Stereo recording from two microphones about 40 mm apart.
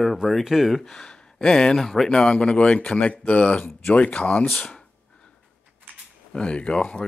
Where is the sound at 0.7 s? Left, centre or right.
Centre.